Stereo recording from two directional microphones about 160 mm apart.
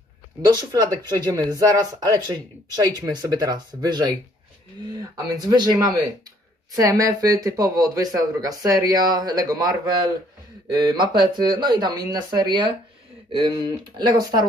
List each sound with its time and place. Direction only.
0.5 s speech: 25° right (ahead or behind)